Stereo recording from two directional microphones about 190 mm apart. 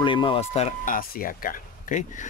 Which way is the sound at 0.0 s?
25° left (ahead or behind).